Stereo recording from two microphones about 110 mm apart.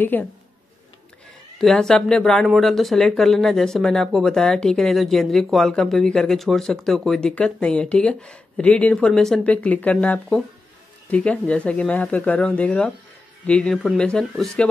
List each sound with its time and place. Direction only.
0.1 s speech: 15° left (ahead or behind)
1.6 s speech: 5° left (ahead or behind)